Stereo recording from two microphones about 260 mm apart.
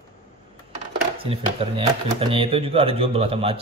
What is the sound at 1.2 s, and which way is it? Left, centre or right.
Speech, right.